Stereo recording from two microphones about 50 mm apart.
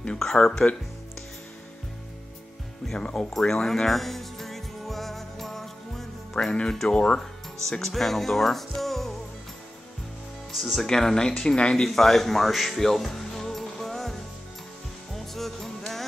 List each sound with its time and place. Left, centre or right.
0.2 s speech: centre
2.9 s speech: centre
3.3 s music: centre
6.3 s speech: centre
7.7 s speech: centre
10.5 s speech: centre
10.8 s speech: centre
15.1 s music: centre